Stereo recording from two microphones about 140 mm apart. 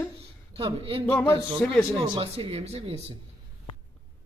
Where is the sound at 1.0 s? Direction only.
15° left (ahead or behind).